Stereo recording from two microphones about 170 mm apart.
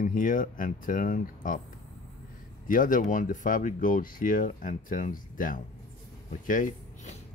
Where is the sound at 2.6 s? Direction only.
50° left (ahead or behind).